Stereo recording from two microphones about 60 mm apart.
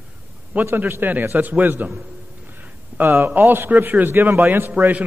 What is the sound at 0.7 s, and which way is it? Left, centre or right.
A man's voice, right.